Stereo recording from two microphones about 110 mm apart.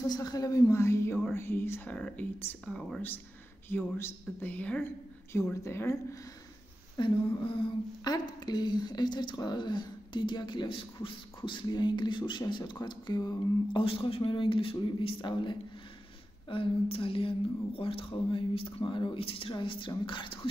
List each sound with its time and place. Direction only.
0.0 s a woman's voice: 35° left (ahead or behind); by 2.0 s 20° left (ahead or behind)
2.0 s speech: 10° left (ahead or behind)
3.9 s a woman's voice: 15° left (ahead or behind)
5.3 s a woman's voice: 25° left (ahead or behind)
7.0 s a woman's voice: 50° left (ahead or behind)
13.7 s a woman's voice: 55° left (ahead or behind)